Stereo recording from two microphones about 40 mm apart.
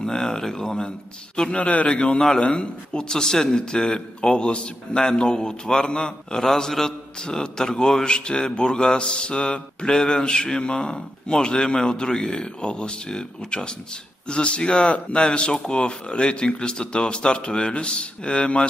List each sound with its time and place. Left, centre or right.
0.0 s speech: centre
1.6 s a man's voice: left
9.9 s a man's voice: centre